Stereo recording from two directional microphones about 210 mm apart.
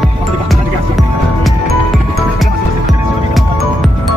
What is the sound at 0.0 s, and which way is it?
Music, centre (ahead or behind).